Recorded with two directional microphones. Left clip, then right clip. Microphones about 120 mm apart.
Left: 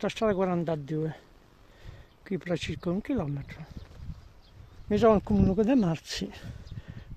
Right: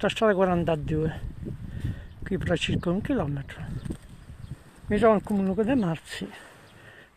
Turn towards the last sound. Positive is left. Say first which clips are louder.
# even
turn(degrees=75)  # may be behind; listen again after turning